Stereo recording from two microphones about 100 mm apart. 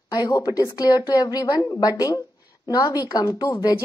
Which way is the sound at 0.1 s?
40° left (ahead or behind).